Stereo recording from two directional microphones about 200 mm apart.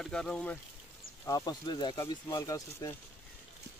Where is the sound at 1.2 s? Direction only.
15° left (ahead or behind).